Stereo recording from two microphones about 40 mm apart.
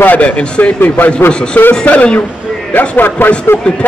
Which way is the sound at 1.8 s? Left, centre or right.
Left.